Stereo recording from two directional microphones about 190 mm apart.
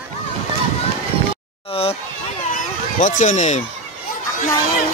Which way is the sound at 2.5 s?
40° left (ahead or behind).